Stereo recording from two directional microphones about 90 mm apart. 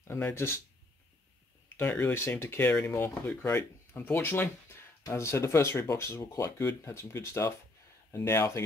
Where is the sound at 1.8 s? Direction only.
20° left (ahead or behind).